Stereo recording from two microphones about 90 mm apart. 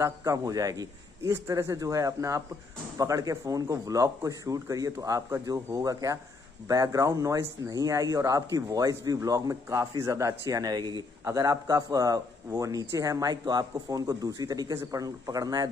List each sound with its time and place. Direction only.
0.0 s speech: 35° right (ahead or behind)
11.2 s speech: 40° right (ahead or behind)